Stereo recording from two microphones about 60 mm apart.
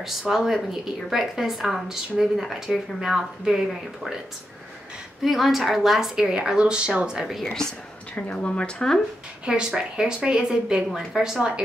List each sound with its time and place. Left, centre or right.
0.0 s speech: centre
5.2 s speech: centre
7.5 s a sound: centre
8.3 s a woman's voice: left
9.5 s speech: centre